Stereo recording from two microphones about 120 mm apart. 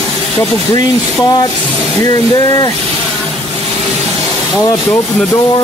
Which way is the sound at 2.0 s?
30° left (ahead or behind).